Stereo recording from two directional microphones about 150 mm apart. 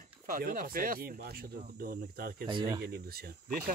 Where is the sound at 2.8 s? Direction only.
90° right.